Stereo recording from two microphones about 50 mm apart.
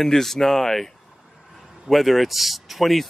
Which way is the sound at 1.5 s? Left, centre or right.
Centre.